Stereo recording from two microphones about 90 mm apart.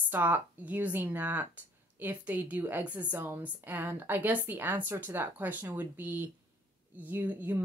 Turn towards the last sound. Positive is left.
turn(degrees=-20)  # may be behind; listen again after turning